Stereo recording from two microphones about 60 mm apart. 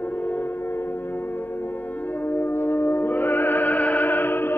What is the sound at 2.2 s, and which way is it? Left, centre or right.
Music, left.